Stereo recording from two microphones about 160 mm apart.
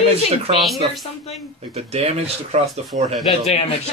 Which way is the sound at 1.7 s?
40° right (ahead or behind).